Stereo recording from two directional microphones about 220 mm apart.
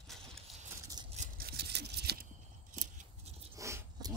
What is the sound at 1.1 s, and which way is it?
Scissors, 40° right (ahead or behind).